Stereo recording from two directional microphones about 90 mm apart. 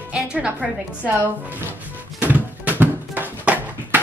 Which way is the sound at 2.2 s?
20° right (ahead or behind).